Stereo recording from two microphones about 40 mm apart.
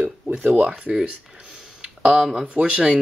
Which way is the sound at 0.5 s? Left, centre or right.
Right.